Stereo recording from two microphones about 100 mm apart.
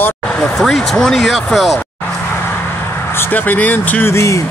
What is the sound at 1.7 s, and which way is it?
Vehicle, 20° left (ahead or behind).